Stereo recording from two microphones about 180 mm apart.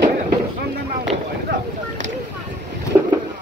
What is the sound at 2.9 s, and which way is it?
Boat, 15° right (ahead or behind).